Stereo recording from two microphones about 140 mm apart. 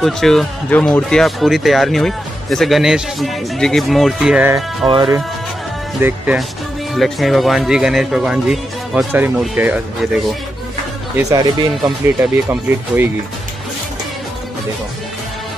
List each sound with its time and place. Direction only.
0.0 s speech: centre (ahead or behind)
4.8 s speech: 35° right (ahead or behind)
5.9 s speech: 15° right (ahead or behind)
6.9 s speech: centre (ahead or behind)
11.2 s speech: 25° right (ahead or behind)
12.4 s speech: 15° right (ahead or behind)